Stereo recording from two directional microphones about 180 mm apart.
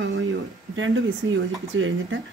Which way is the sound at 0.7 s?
90° right.